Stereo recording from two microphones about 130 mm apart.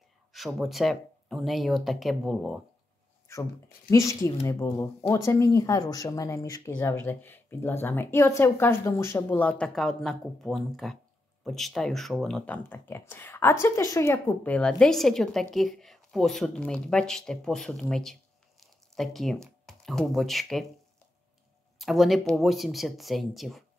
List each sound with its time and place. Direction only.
0.3 s speech: centre (ahead or behind)
3.9 s a woman's voice: 25° left (ahead or behind); by 20.6 s centre (ahead or behind)
21.7 s speech: centre (ahead or behind)